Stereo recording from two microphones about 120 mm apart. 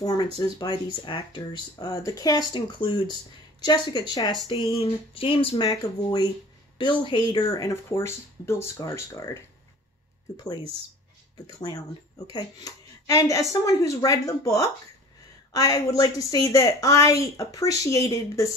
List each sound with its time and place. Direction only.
0.0 s speech: 35° left (ahead or behind)
4.5 s a sound: 50° left (ahead or behind)
5.7 s speech: 35° left (ahead or behind)
7.7 s speech: 20° left (ahead or behind)
12.3 s speech: 35° left (ahead or behind)